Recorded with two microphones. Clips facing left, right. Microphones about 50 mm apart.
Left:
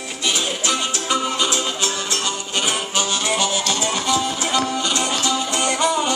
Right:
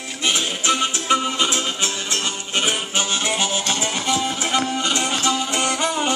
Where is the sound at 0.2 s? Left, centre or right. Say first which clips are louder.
Even; right.